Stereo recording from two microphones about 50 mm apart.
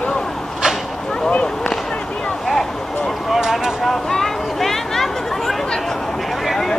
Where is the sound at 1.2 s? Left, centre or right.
Left.